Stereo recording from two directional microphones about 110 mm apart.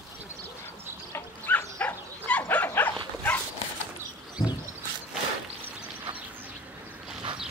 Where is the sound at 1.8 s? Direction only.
10° left (ahead or behind).